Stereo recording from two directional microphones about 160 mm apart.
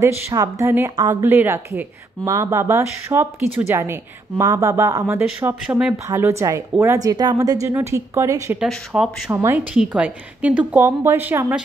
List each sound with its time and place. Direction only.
0.0 s speech: 20° right (ahead or behind)
8.5 s speech: 5° right (ahead or behind)
9.3 s speech: 15° right (ahead or behind)